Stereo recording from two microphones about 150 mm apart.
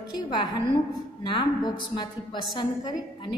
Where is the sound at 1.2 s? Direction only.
30° left (ahead or behind).